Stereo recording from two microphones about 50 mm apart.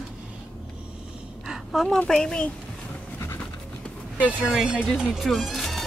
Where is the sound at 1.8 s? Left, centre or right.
Centre.